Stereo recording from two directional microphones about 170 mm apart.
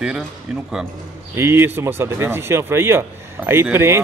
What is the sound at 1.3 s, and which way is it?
Speech, 15° right (ahead or behind).